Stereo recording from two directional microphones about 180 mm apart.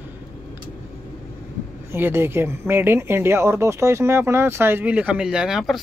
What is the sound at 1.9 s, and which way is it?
Speech, 15° right (ahead or behind).